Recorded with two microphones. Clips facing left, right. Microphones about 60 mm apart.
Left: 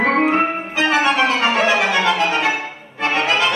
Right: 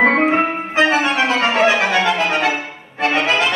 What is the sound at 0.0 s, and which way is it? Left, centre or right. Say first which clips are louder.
Music: right 2 dB; right.